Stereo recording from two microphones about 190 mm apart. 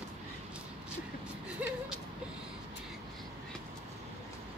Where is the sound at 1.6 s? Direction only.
5° right (ahead or behind).